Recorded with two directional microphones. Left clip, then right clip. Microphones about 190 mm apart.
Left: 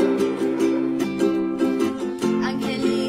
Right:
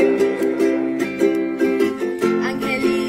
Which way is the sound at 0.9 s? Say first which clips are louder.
Right 3 dB; centre (ahead or behind).